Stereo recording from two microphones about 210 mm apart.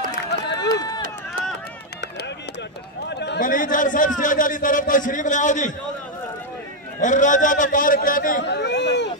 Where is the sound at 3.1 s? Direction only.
55° left (ahead or behind); by 5.7 s 35° left (ahead or behind).